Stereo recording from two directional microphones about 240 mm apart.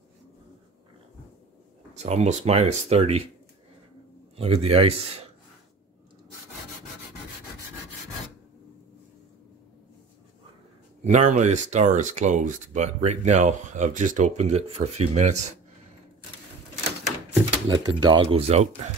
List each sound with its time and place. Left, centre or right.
2.0 s speech: right
4.4 s speech: right
11.1 s speech: right
17.3 s speech: centre